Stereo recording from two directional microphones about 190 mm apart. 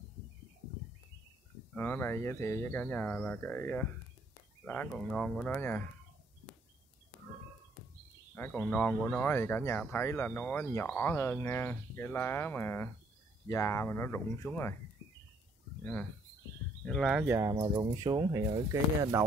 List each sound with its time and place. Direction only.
1.7 s speech: 10° left (ahead or behind)
8.4 s speech: 10° left (ahead or behind)
15.8 s speech: 10° left (ahead or behind)
17.9 s speech: 20° right (ahead or behind)